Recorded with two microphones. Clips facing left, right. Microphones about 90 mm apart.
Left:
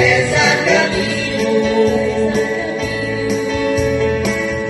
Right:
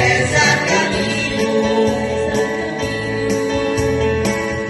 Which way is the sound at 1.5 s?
45° right (ahead or behind).